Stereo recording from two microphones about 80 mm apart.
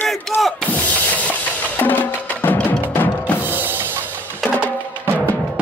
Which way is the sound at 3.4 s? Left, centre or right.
Right.